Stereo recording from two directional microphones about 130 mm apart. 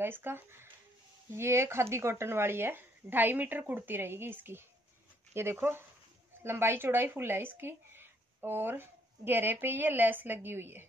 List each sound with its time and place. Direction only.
0.0 s speech: 15° right (ahead or behind)